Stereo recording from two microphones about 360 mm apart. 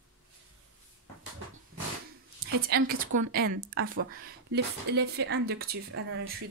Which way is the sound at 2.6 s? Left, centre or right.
Right.